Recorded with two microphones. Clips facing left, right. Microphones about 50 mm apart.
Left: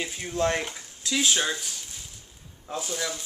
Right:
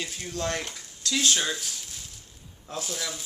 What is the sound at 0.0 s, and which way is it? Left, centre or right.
Speech, centre.